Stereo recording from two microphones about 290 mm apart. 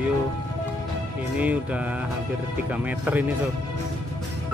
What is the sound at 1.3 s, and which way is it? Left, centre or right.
Speech, centre.